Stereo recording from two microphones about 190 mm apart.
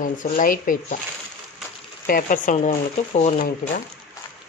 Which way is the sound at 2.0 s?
45° left (ahead or behind).